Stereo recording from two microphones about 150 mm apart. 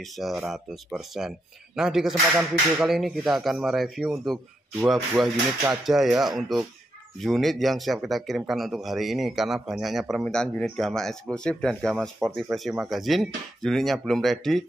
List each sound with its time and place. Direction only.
0.0 s speech: centre (ahead or behind)